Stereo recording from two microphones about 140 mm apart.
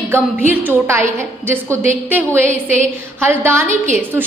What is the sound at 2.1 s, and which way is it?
A woman's voice, 15° right (ahead or behind).